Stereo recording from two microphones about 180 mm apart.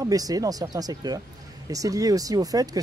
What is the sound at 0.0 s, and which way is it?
Speech, 20° right (ahead or behind).